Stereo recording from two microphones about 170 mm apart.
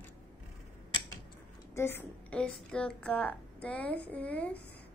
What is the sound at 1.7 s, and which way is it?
A woman's voice, 15° left (ahead or behind).